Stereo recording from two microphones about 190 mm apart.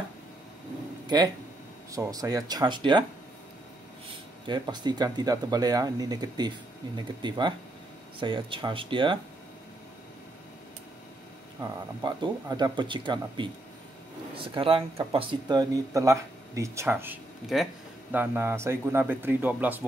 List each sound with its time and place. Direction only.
1.0 s speech: 20° right (ahead or behind)
4.5 s speech: 25° right (ahead or behind)
11.6 s speech: 20° right (ahead or behind)
17.5 s speech: centre (ahead or behind)